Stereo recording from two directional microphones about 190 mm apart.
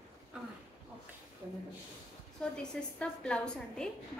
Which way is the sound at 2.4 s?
5° left (ahead or behind).